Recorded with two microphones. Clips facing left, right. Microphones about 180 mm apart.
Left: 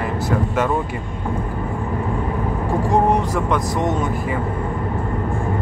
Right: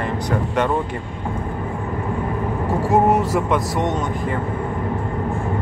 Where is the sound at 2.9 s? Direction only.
5° right (ahead or behind).